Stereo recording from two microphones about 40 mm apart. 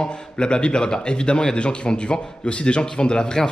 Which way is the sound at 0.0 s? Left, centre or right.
Left.